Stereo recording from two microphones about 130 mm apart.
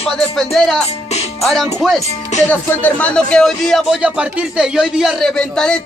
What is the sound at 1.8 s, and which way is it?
Speech, centre (ahead or behind).